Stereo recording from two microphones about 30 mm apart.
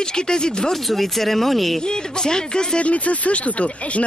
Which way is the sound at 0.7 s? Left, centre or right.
Centre.